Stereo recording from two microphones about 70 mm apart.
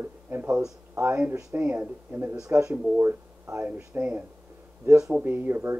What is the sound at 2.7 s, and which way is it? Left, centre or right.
Speech, centre.